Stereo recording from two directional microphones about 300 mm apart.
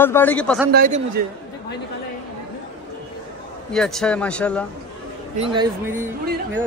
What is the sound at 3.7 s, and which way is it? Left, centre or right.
Speech, centre.